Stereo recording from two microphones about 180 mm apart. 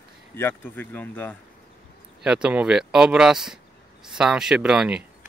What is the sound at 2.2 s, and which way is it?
Speech, 5° right (ahead or behind).